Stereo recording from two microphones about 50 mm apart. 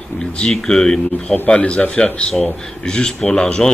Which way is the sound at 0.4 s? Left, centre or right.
Centre.